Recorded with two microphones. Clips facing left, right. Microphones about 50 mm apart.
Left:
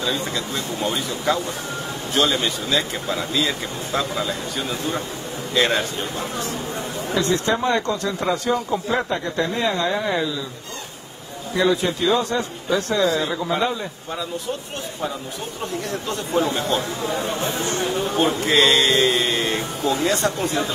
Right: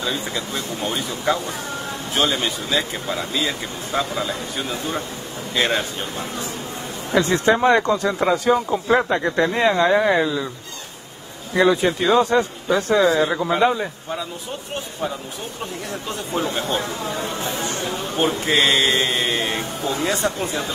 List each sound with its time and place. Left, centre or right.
0.1 s speech: centre
7.4 s speech: right
8.8 s speech: right
11.5 s speech: right
12.3 s speech: right
16.5 s speech: centre
18.1 s a man's voice: centre